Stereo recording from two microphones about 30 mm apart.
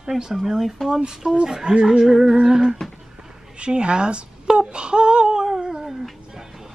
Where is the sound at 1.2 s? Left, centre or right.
Right.